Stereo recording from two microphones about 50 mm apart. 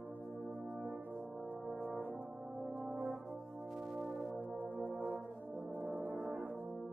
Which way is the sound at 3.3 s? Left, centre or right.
Centre.